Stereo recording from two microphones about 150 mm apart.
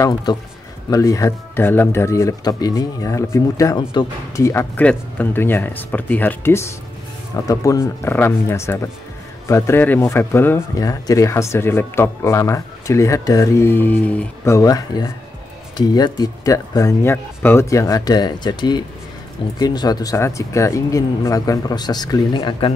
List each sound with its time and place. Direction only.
0.0 s speech: 25° left (ahead or behind)